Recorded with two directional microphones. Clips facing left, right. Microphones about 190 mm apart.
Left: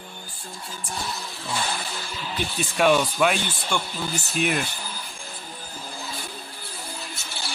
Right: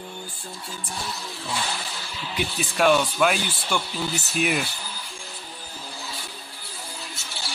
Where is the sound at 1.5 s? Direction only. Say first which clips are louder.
Left 2 dB; 50° left (ahead or behind).